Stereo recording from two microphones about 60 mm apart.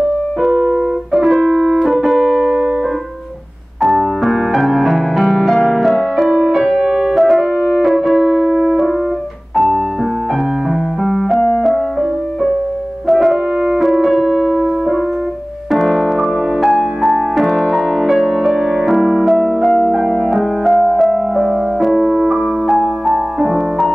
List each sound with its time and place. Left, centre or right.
0.4 s keyboard: centre
3.8 s music: centre
6.2 s music: centre
6.8 s piano: centre
8.5 s music: centre
11.1 s music: centre
13.1 s french horn: centre
13.7 s keyboard: centre
15.7 s music: centre